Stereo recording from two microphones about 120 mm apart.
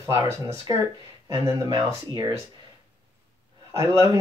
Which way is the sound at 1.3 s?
30° right (ahead or behind).